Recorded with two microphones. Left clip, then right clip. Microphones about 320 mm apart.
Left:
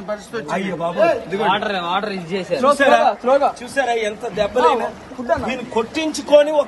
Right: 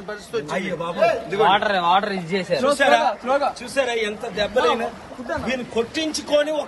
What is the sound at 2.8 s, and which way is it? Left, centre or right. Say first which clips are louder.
A man's voice: left 3 dB; centre.